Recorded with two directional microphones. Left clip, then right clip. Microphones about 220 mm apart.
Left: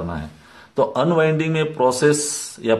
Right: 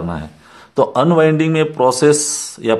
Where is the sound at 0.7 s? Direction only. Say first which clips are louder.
Right 5 dB; 25° right (ahead or behind).